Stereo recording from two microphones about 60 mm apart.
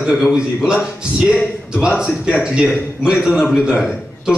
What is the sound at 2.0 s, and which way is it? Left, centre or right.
A man's voice, centre.